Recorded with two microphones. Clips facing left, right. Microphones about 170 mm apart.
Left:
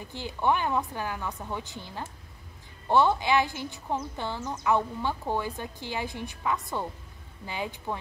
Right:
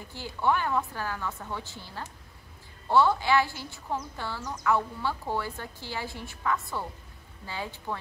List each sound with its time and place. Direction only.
0.1 s a woman's voice: 20° left (ahead or behind)